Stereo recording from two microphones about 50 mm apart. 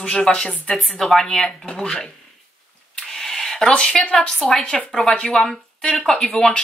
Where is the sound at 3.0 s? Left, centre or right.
Centre.